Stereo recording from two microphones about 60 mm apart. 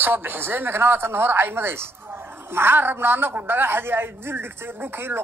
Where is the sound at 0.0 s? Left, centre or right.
Right.